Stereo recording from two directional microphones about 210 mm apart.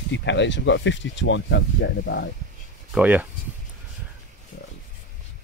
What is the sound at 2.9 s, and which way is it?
Speech, 10° right (ahead or behind).